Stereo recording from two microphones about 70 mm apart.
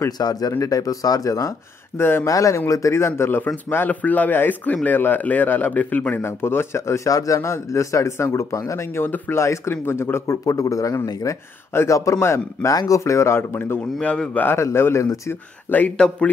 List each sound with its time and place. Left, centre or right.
0.2 s speech: left
2.0 s speech: left
2.2 s speech: left
6.2 s speech: left
7.1 s speech: left
7.3 s speech: left
10.3 s speech: left
12.7 s speech: left
13.0 s speech: left
14.0 s speech: centre
14.3 s speech: left